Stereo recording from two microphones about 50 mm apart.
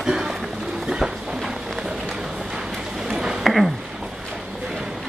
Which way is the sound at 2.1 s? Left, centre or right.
Centre.